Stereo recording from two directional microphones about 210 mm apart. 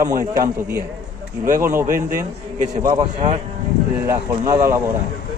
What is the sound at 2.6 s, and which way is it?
Speech, 20° right (ahead or behind).